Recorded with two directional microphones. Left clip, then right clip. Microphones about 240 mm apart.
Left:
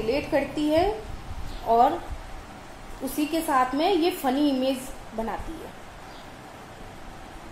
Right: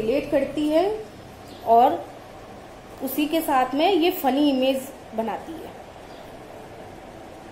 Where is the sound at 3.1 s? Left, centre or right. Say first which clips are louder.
Right 2 dB; centre.